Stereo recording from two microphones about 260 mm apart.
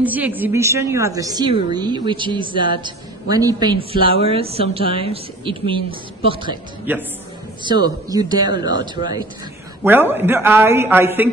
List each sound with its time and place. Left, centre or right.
0.0 s a woman's voice: centre
6.9 s a woman's voice: centre